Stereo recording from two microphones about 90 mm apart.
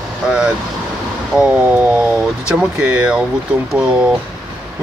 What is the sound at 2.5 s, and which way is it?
Speech, 10° right (ahead or behind).